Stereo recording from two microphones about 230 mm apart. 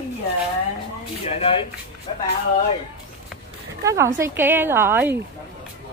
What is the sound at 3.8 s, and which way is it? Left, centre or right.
A woman's voice, centre.